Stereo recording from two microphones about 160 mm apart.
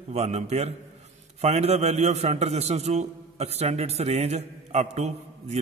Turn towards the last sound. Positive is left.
turn(degrees=-40)  # may be behind; listen again after turning